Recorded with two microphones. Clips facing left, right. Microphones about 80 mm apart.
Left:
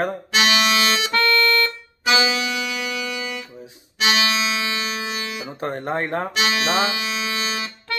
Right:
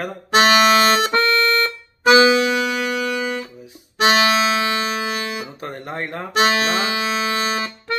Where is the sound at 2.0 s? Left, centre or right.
Right.